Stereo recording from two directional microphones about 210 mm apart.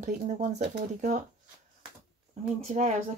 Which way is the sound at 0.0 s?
35° right (ahead or behind).